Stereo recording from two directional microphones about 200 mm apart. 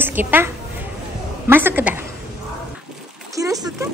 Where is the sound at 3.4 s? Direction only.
20° right (ahead or behind).